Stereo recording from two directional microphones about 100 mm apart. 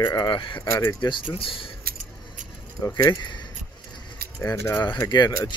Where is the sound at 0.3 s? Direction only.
55° left (ahead or behind).